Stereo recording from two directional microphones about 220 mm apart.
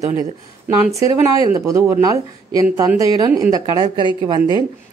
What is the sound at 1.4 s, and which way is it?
A woman's voice, 15° right (ahead or behind).